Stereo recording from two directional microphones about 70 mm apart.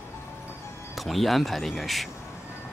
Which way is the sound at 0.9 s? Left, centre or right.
Centre.